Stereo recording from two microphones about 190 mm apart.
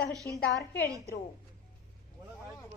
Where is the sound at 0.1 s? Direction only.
20° right (ahead or behind).